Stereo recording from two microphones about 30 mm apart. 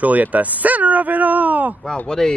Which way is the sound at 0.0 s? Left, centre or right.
Right.